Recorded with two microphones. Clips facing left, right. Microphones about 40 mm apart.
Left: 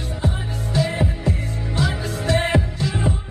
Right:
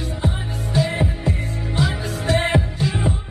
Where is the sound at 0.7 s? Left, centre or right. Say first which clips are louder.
Right 1 dB; centre.